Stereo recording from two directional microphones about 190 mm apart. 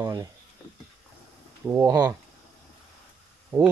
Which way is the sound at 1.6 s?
15° right (ahead or behind).